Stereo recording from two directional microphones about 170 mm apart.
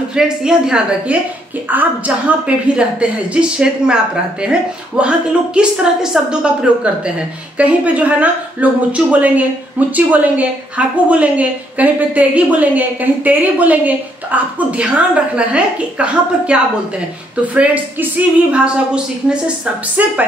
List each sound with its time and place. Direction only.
0.1 s a woman's voice: 5° right (ahead or behind)
17.6 s a woman's voice: 10° right (ahead or behind)